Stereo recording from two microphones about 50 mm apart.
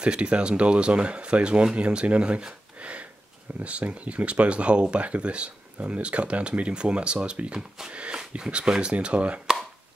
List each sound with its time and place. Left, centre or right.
0.0 s speech: right
7.5 s speech: centre
7.9 s speech: right